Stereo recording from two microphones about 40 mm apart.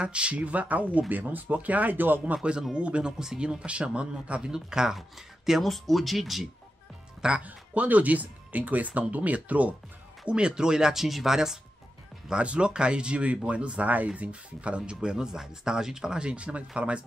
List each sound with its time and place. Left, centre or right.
0.0 s speech: right
2.3 s speech: right; by 6.5 s centre
7.2 s speech: right
7.4 s speech: right
10.2 s speech: right
12.3 s speech: right